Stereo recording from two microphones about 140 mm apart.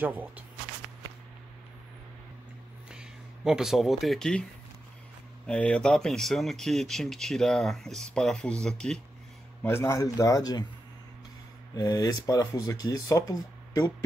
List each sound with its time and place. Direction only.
0.0 s speech: 10° right (ahead or behind)
2.9 s speech: 5° right (ahead or behind)
5.5 s speech: 5° left (ahead or behind)
9.6 s speech: 15° left (ahead or behind)
11.7 s speech: 30° left (ahead or behind)